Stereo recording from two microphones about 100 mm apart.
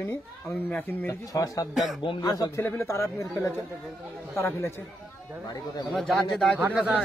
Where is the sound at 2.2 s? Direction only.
35° left (ahead or behind).